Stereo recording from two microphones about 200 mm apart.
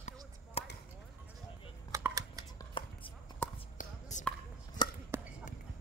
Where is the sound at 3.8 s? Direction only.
40° left (ahead or behind).